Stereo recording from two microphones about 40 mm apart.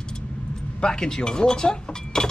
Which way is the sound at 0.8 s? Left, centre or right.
Centre.